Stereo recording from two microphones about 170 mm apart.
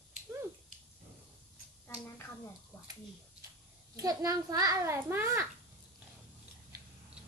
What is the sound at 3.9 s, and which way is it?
A child's voice, 20° right (ahead or behind).